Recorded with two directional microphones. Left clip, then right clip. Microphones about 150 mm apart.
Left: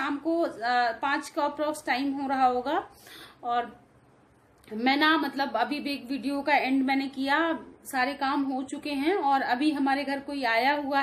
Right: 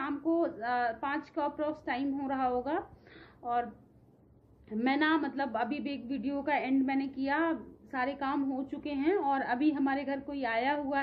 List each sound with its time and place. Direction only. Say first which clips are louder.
0.0 s a woman's voice: left 3 dB; 20° left (ahead or behind)
4.6 s a woman's voice: left 6 dB; 20° left (ahead or behind)